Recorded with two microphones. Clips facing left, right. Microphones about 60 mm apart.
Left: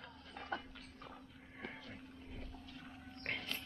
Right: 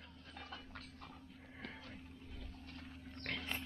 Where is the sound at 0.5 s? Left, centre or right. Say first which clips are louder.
Left 12 dB; left.